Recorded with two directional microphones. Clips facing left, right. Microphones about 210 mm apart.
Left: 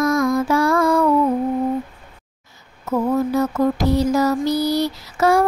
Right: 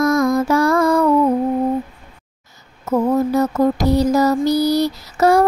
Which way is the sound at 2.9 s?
40° right (ahead or behind).